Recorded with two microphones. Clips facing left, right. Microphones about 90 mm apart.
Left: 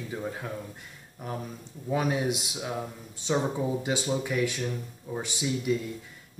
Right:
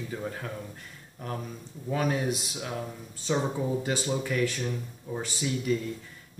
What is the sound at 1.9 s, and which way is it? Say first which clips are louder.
Speech: left 1 dB; 15° left (ahead or behind).